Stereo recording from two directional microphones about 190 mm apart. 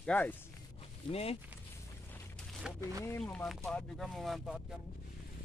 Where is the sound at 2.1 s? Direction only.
Centre (ahead or behind).